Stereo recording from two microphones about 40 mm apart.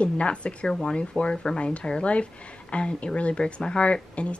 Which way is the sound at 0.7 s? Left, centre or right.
Centre.